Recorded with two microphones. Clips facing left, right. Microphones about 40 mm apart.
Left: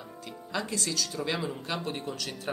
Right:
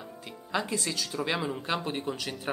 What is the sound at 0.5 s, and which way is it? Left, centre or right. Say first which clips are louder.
Speech: right 2 dB; centre.